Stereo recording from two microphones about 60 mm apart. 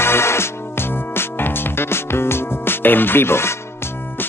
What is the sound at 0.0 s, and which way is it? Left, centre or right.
Music, left.